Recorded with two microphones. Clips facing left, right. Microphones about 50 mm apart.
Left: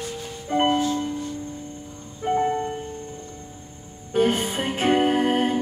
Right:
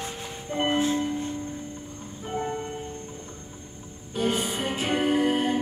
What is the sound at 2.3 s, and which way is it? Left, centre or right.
Music, left.